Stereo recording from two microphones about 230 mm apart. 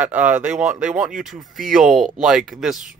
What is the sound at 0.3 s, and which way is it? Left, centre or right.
Speech, right.